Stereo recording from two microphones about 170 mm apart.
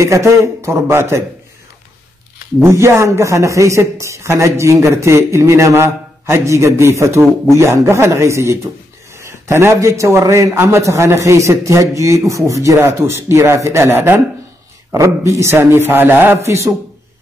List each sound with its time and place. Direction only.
0.0 s a man's voice: 15° right (ahead or behind)
2.6 s a man's voice: 15° right (ahead or behind)